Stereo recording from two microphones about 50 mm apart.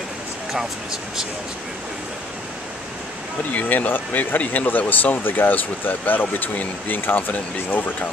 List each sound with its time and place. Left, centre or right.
3.5 s speech: left